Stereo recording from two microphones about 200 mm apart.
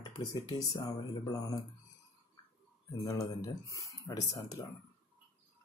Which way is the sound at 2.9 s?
20° left (ahead or behind).